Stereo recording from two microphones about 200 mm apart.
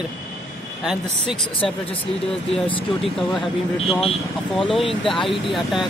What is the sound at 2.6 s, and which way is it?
Speech, 25° left (ahead or behind).